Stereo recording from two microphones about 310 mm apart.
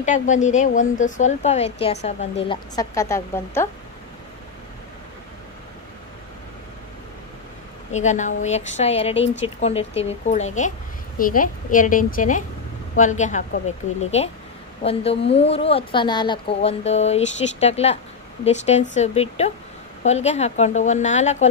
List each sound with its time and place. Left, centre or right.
0.0 s a woman's voice: left
7.9 s a woman's voice: left